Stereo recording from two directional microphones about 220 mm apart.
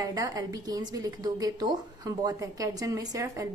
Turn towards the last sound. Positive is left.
turn(degrees=-15)  # may be behind; listen again after turning